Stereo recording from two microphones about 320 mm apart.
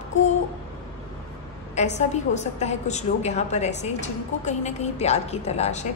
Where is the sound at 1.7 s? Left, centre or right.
Left.